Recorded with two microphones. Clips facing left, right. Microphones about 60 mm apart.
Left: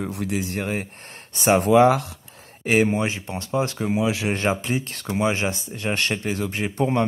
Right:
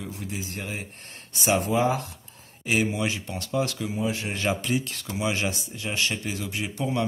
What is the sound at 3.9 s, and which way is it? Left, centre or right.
Speech, left.